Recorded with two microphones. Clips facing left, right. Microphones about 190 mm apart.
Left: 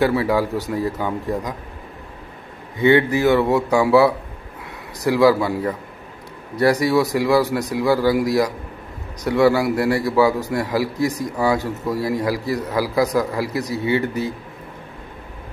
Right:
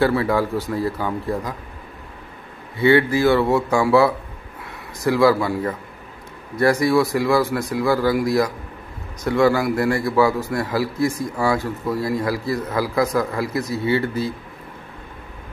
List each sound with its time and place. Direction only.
0.0 s a man's voice: 10° left (ahead or behind)
2.8 s a man's voice: 20° left (ahead or behind)
7.4 s a man's voice: 40° left (ahead or behind)
7.7 s a man's voice: 15° left (ahead or behind)